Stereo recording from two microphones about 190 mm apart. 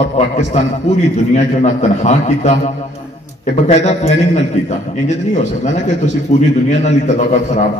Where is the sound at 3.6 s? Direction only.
35° left (ahead or behind).